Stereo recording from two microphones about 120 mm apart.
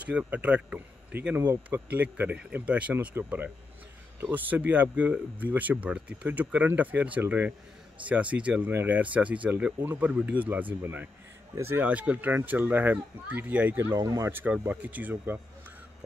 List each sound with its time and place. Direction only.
0.0 s speech: 10° right (ahead or behind)
13.9 s speech: 30° right (ahead or behind)
14.3 s speech: 15° right (ahead or behind)